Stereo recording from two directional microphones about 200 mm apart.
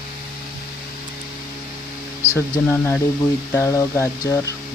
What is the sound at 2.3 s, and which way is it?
Speech, 10° left (ahead or behind).